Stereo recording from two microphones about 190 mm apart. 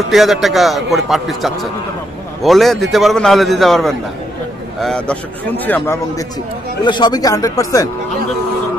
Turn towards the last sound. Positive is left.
turn(degrees=15)  # may be behind; listen again after turning